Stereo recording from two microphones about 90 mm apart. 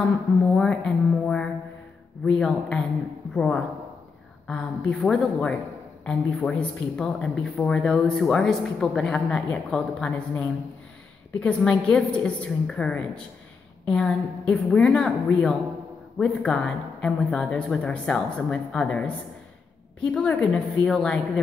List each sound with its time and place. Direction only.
0.6 s speech: 10° left (ahead or behind)
11.3 s speech: 15° left (ahead or behind)